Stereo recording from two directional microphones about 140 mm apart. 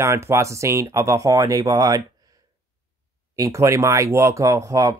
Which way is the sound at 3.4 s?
20° right (ahead or behind).